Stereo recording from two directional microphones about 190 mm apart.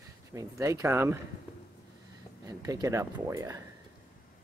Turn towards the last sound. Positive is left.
turn(degrees=-15)  # may be behind; listen again after turning